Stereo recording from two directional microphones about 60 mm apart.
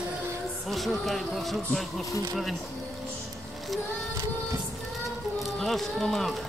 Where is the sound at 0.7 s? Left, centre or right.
Centre.